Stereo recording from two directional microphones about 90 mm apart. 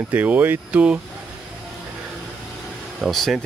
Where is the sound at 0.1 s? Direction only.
20° right (ahead or behind).